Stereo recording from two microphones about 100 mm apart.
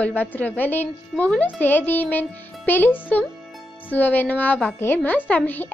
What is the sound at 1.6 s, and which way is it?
A child's voice, 20° left (ahead or behind).